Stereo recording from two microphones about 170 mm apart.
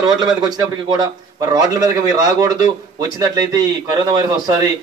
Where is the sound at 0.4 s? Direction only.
25° right (ahead or behind).